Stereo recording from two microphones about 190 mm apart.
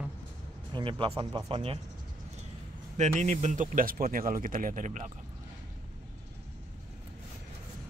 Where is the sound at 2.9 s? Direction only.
40° right (ahead or behind).